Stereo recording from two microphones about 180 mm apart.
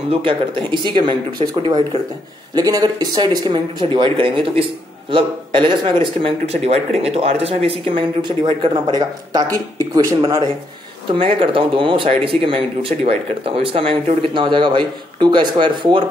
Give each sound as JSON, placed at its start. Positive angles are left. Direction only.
{"t": 0.1, "sound": "speech", "side_deg": -30}